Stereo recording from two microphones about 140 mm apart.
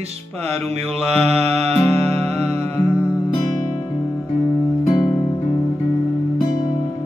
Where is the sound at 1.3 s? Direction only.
45° right (ahead or behind).